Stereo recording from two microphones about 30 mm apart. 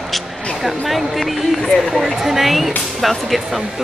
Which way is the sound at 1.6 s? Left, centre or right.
Centre.